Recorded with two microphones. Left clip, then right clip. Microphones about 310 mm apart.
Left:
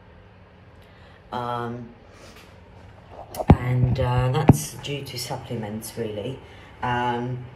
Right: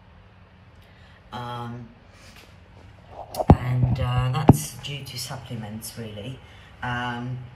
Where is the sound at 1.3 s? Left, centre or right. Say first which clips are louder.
Left 6 dB; centre.